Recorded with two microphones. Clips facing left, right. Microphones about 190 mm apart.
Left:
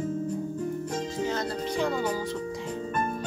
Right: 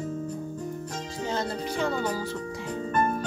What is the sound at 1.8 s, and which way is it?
Speech, centre (ahead or behind).